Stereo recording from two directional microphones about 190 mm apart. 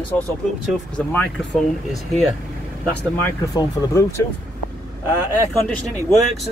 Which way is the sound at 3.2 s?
15° left (ahead or behind).